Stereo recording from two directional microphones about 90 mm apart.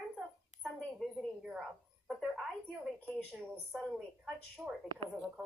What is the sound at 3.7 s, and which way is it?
Speech, centre (ahead or behind).